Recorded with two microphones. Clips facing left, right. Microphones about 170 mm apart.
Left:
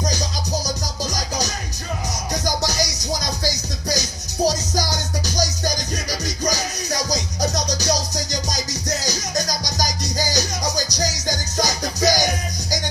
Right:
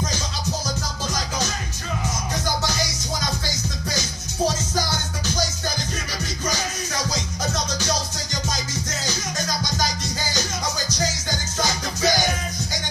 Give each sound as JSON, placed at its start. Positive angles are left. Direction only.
{"t": 0.7, "sound": "music", "side_deg": 40}